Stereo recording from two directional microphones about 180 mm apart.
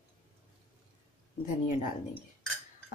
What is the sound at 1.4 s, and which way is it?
Speech, 45° left (ahead or behind).